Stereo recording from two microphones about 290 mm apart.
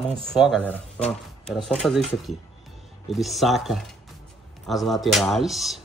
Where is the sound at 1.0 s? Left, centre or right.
Left.